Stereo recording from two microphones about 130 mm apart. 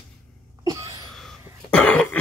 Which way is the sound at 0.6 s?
25° right (ahead or behind).